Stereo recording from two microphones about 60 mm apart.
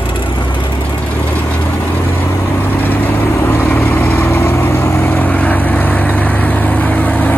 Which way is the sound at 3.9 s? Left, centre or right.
Left.